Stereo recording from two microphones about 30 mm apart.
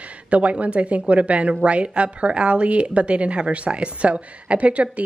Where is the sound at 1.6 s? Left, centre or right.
Right.